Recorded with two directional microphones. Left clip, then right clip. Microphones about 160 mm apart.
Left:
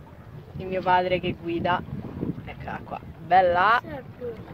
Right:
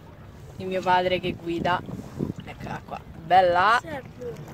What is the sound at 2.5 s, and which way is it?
Speech, centre (ahead or behind).